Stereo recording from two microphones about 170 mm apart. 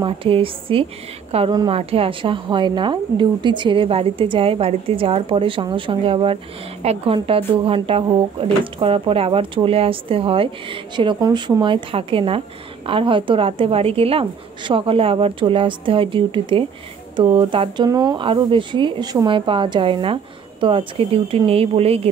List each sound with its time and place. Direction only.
0.0 s a woman's voice: 30° right (ahead or behind)